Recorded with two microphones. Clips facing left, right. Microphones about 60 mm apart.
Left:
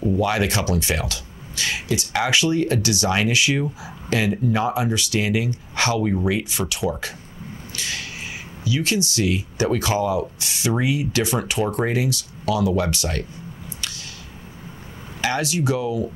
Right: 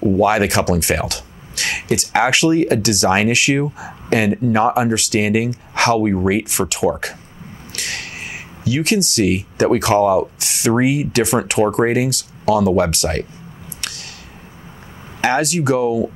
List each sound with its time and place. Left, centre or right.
0.2 s speech: right
6.2 s speech: right
6.7 s speech: right
13.7 s a sound: right
15.1 s speech: right
15.4 s speech: right